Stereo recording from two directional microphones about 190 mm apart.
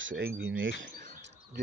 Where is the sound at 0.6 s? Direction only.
90° right.